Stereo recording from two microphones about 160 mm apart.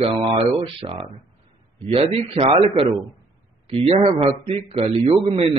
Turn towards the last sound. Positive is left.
turn(degrees=-35)  # may be behind; listen again after turning